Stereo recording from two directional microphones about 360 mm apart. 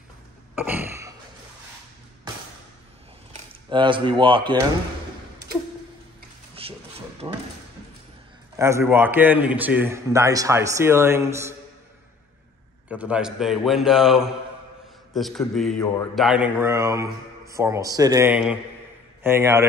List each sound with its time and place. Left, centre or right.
0.6 s a sound: centre
3.7 s a man's voice: centre
6.6 s a sound: centre
7.2 s drawer open or close: centre
8.5 s a man's voice: centre
12.8 s a man's voice: centre